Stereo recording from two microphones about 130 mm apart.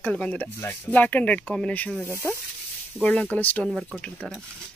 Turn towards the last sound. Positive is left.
turn(degrees=5)  # may be behind; listen again after turning